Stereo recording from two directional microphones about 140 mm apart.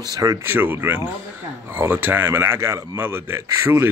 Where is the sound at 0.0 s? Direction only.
25° right (ahead or behind).